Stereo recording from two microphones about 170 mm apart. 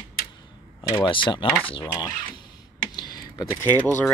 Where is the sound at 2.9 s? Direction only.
25° left (ahead or behind).